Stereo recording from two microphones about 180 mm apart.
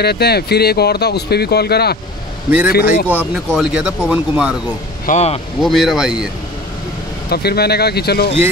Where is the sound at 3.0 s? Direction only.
5° right (ahead or behind).